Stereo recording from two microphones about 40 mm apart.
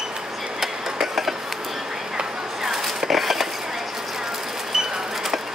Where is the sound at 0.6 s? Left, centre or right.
Centre.